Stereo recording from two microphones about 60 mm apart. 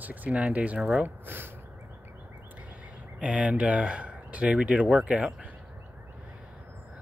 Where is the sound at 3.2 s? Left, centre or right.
Centre.